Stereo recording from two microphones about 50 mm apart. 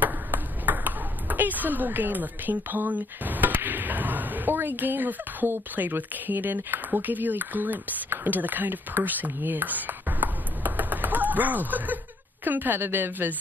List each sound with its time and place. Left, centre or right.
0.0 s speech: right